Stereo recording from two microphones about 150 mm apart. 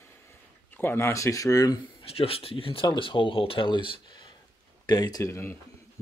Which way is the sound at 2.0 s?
40° left (ahead or behind).